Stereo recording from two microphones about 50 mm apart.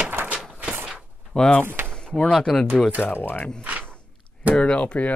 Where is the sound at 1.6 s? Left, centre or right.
Right.